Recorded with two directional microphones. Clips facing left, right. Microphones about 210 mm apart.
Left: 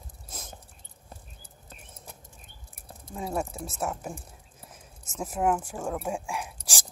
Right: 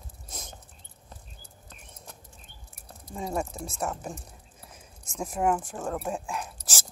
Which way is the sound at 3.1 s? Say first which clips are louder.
Even; 5° left (ahead or behind).